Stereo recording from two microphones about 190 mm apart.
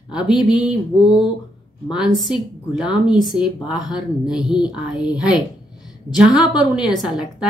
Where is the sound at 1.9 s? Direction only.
5° right (ahead or behind).